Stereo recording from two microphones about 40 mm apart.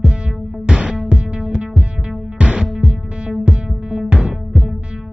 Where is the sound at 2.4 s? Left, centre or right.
Right.